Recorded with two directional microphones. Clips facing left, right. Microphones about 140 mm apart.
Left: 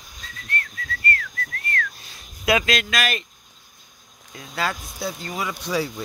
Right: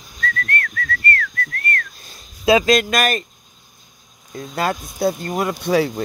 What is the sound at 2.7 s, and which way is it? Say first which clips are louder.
Speech: right 8 dB; 45° right (ahead or behind).